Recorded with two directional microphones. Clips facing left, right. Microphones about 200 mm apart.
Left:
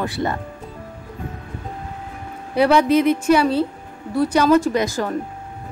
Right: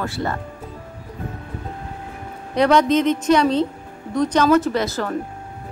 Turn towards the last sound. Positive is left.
turn(degrees=15)  # may be behind; listen again after turning